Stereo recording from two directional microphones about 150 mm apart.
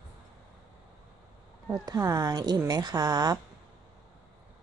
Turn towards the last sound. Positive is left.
turn(degrees=-25)  # may be behind; listen again after turning